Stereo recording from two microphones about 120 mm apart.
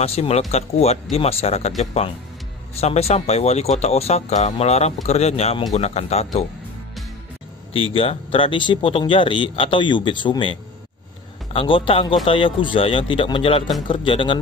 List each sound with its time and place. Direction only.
0.0 s speech: 60° left (ahead or behind)
2.8 s speech: 60° left (ahead or behind)
7.7 s speech: 50° left (ahead or behind)